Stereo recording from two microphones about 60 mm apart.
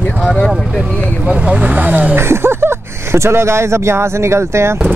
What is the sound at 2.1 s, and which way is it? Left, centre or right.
Speech, right.